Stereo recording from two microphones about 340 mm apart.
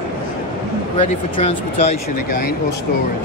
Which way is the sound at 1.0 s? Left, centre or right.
Centre.